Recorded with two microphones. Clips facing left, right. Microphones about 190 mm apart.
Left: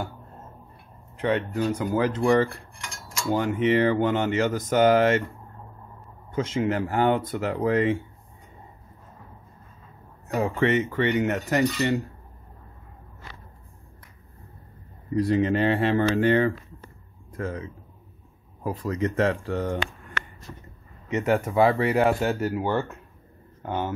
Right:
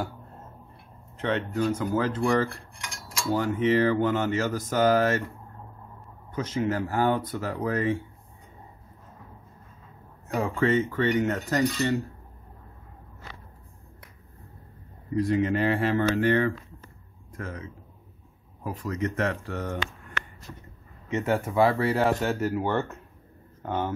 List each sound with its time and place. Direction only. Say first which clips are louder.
1.1 s speech: left 3 dB; 10° left (ahead or behind)
6.3 s speech: left 2 dB; 25° left (ahead or behind)
10.3 s speech: left 1 dB; 20° left (ahead or behind)
15.2 s speech: left 2 dB; 30° left (ahead or behind)
21.1 s speech: left 3 dB; 20° left (ahead or behind)